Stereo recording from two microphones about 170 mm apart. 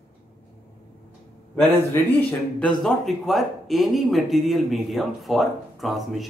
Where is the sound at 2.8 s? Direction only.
Centre (ahead or behind).